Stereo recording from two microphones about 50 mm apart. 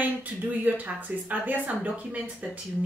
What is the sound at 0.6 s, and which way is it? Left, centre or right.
Speech, right.